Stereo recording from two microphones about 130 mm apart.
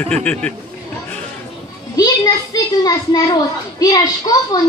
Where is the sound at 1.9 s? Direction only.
30° left (ahead or behind).